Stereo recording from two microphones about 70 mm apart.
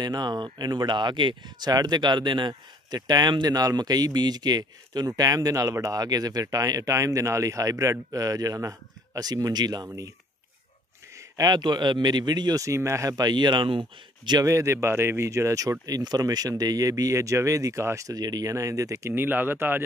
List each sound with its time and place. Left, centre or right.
0.0 s speech: right
6.4 s speech: right
11.1 s a man's voice: right
12.6 s speech: right
13.1 s a man's voice: right
14.4 s speech: right
15.8 s speech: right
19.1 s speech: right